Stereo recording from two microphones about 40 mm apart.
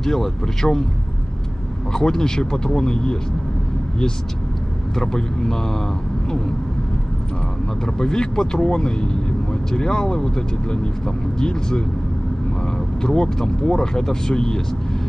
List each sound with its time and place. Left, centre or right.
0.0 s speech: centre
1.9 s speech: centre
4.9 s speech: centre
7.8 s speech: centre